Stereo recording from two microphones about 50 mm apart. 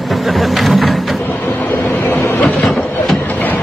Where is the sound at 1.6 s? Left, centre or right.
Left.